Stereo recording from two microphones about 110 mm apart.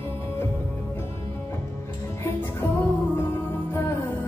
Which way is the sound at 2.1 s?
20° left (ahead or behind).